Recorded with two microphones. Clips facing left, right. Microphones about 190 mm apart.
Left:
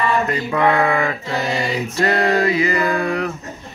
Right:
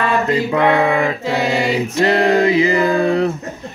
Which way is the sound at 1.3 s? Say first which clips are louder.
Right 5 dB; 25° right (ahead or behind).